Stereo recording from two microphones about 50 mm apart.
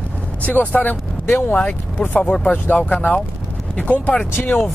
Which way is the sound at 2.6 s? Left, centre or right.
Left.